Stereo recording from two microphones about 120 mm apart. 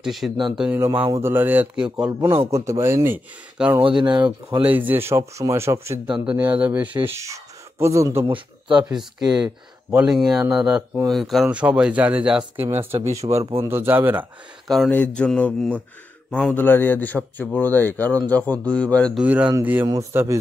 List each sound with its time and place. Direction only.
0.0 s speech: centre (ahead or behind)
0.7 s speech: 20° right (ahead or behind)
2.5 s speech: 25° right (ahead or behind)
3.8 s speech: 40° right (ahead or behind)
4.6 s speech: 15° right (ahead or behind)
6.1 s speech: 10° right (ahead or behind)
8.3 s speech: 40° right (ahead or behind)
8.9 s speech: 5° right (ahead or behind)
11.4 s speech: 10° right (ahead or behind)
12.6 s speech: 25° right (ahead or behind)
14.9 s speech: 10° left (ahead or behind)
19.1 s speech: 10° right (ahead or behind)